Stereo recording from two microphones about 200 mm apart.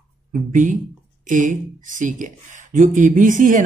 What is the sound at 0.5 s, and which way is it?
Speech, 40° right (ahead or behind).